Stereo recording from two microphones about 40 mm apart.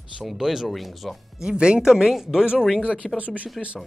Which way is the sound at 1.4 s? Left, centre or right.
Centre.